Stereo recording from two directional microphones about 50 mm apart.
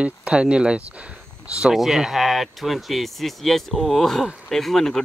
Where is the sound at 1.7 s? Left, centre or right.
Centre.